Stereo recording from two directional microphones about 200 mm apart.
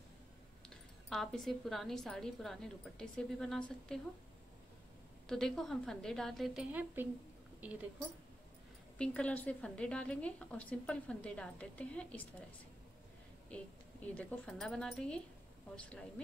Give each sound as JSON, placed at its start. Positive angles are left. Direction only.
{"t": 1.1, "sound": "a woman's voice", "side_deg": 0}
{"t": 5.3, "sound": "a woman's voice", "side_deg": 0}
{"t": 8.9, "sound": "a woman's voice", "side_deg": 5}
{"t": 13.5, "sound": "a woman's voice", "side_deg": 5}